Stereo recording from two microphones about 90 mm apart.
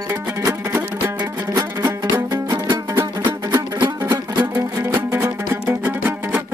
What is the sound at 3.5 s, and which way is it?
Music, 50° right (ahead or behind).